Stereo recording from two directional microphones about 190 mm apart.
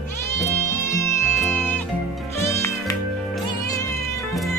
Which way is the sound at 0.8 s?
15° left (ahead or behind).